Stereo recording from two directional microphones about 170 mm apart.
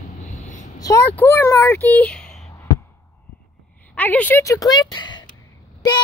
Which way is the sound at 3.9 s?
10° left (ahead or behind).